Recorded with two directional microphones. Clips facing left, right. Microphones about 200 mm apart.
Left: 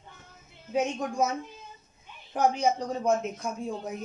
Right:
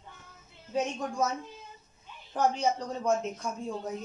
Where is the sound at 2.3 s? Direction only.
15° left (ahead or behind).